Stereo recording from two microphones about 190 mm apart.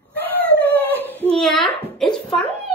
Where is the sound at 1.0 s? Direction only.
10° left (ahead or behind).